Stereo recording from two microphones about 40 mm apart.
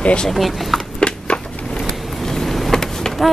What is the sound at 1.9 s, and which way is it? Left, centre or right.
Vehicle, centre.